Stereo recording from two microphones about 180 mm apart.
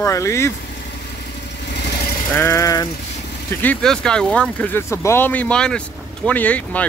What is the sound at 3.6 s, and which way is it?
Speech, 5° left (ahead or behind).